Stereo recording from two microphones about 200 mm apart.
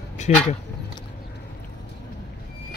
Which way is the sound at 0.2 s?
35° left (ahead or behind).